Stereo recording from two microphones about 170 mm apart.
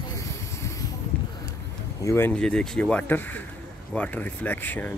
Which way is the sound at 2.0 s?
15° left (ahead or behind).